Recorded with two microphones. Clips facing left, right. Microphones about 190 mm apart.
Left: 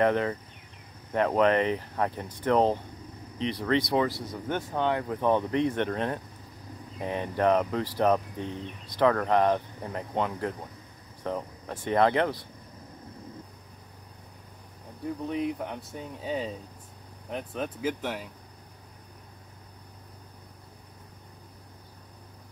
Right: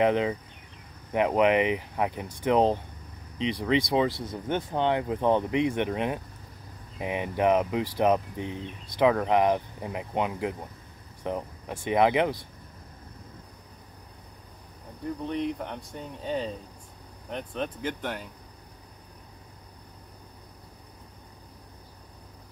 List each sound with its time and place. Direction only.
0.0 s speech: 15° right (ahead or behind)
15.2 s speech: 5° left (ahead or behind)